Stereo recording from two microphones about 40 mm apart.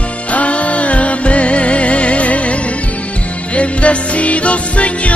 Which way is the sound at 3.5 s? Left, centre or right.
Left.